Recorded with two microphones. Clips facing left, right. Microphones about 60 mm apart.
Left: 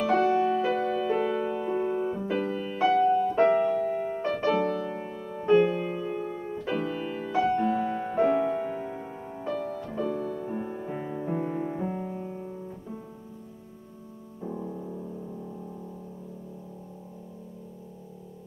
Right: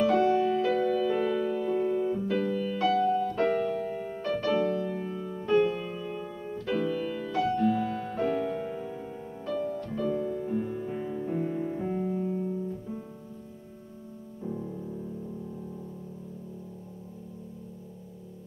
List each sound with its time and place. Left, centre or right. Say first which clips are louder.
0.1 s music: left 1 dB; left
10.2 s music: right 1 dB; left
10.5 s music: right 2 dB; left; by 12.5 s centre
14.4 s music: left 1 dB; centre